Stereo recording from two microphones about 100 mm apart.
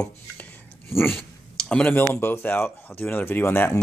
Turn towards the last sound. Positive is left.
turn(degrees=20)  # may be behind; listen again after turning